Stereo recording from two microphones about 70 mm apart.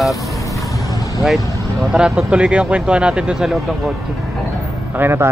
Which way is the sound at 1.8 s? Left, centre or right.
Centre.